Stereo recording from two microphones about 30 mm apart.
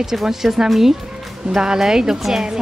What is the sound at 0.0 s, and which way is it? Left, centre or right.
Speech, centre.